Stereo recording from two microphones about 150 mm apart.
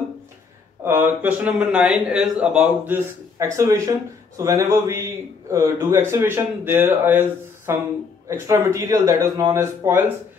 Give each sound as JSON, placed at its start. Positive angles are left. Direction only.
{"t": 0.8, "sound": "a man's voice", "side_deg": -15}